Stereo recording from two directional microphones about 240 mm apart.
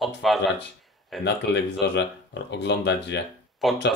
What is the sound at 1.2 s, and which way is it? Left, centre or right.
Speech, left.